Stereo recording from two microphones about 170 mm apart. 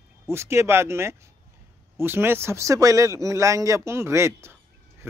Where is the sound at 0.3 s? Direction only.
15° right (ahead or behind).